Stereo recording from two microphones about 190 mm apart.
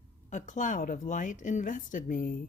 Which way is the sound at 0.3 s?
40° left (ahead or behind).